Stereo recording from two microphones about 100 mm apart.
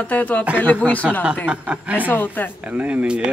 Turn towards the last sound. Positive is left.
turn(degrees=-10)  # may be behind; listen again after turning